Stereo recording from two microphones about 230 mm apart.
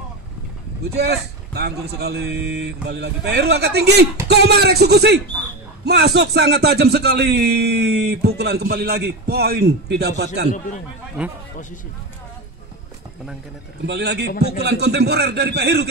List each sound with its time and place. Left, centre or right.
0.9 s a man's voice: right
11.2 s speech: centre
13.8 s a man's voice: right